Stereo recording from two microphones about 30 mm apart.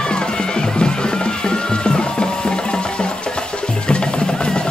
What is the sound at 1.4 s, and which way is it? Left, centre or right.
Music, left.